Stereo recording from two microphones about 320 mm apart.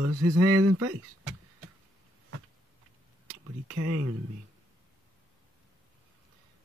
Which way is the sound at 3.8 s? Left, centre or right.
Right.